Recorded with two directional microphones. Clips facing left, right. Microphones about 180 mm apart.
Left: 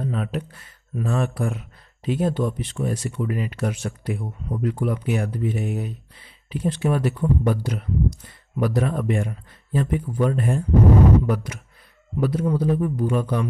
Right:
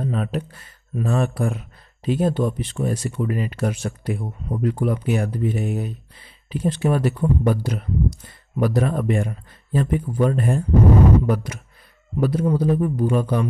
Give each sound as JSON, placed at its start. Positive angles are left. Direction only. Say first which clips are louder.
{"t": 0.0, "sound": "speech", "louder": "right 2 dB", "side_deg": -35}